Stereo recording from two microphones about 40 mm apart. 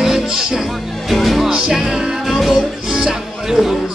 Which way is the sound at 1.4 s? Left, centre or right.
Centre.